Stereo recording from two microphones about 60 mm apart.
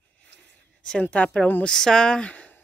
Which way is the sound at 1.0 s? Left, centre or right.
Left.